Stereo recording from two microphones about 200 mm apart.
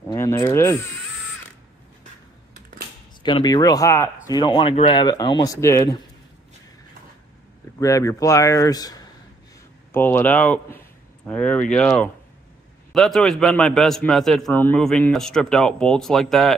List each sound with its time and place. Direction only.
0.1 s speech: 15° left (ahead or behind)
3.2 s speech: 25° left (ahead or behind)
7.8 s speech: 15° left (ahead or behind)
12.9 s a man's voice: centre (ahead or behind)